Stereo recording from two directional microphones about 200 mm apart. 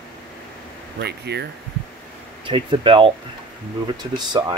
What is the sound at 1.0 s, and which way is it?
Speech, 55° right (ahead or behind).